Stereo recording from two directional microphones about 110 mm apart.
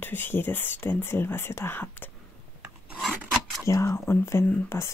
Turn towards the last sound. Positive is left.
turn(degrees=25)  # may be behind; listen again after turning